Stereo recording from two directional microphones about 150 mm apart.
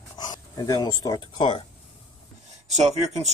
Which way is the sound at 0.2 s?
25° left (ahead or behind).